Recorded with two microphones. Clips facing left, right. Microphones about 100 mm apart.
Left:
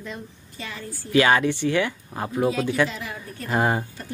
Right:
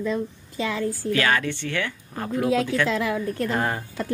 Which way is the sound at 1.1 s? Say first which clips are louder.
Left 6 dB; 20° left (ahead or behind).